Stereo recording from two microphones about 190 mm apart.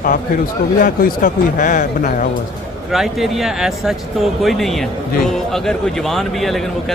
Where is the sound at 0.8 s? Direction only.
45° left (ahead or behind).